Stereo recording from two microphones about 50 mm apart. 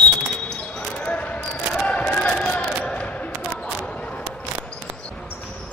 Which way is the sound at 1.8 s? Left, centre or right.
Left.